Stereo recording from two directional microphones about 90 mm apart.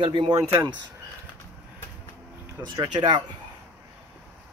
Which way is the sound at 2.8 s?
55° right (ahead or behind).